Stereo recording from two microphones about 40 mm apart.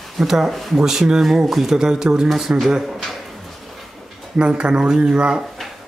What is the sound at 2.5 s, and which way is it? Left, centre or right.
Speech, right.